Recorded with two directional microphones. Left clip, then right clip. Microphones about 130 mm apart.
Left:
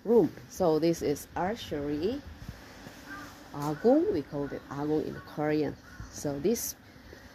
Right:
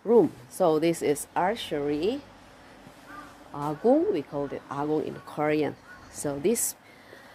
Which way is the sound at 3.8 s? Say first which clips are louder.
Right 2 dB; 20° right (ahead or behind).